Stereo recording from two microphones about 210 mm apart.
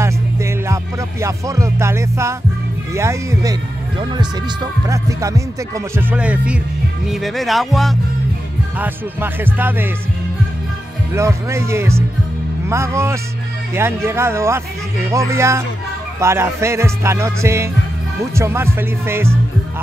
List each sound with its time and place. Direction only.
0.0 s music: 15° right (ahead or behind)
7.1 s speech: centre (ahead or behind)
8.7 s music: 10° right (ahead or behind)
11.1 s music: 15° right (ahead or behind)